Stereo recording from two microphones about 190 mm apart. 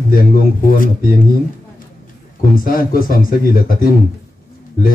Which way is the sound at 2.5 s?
50° left (ahead or behind).